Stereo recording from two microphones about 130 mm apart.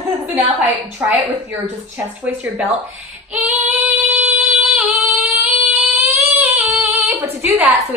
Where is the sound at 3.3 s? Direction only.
10° right (ahead or behind).